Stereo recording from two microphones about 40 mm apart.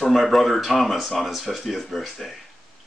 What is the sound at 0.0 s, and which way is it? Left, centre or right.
Speech, centre.